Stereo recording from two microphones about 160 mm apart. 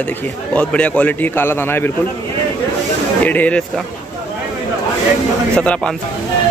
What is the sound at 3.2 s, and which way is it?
Speech, 10° left (ahead or behind).